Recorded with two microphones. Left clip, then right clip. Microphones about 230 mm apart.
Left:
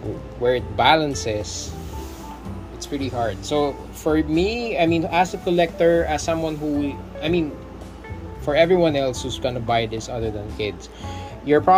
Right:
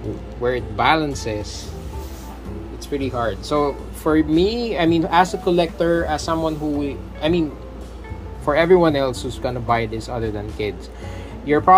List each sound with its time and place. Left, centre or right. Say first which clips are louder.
0.4 s speech: left 1 dB; centre
3.5 s speech: right 2 dB; centre
5.8 s a woman's voice: left 1 dB; left
6.4 s speech: right 2 dB; centre
8.5 s speech: right 2 dB; centre
11.4 s speech: even; centre